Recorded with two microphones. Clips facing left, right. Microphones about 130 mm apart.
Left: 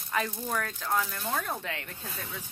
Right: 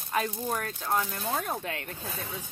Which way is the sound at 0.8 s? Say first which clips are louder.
Right 1 dB; 20° right (ahead or behind).